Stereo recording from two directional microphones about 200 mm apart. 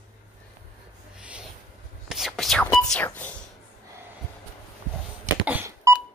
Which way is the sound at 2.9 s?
5° left (ahead or behind).